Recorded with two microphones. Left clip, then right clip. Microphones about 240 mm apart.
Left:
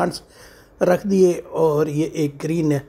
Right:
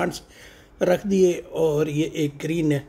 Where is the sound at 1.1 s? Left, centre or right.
Centre.